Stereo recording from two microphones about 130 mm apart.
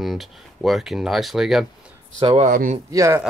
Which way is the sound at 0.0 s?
Centre (ahead or behind).